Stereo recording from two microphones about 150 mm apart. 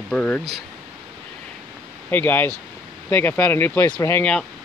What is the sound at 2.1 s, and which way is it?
Speech, 15° left (ahead or behind).